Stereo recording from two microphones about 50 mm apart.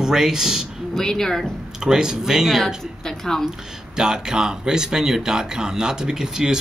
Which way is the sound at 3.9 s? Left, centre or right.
Centre.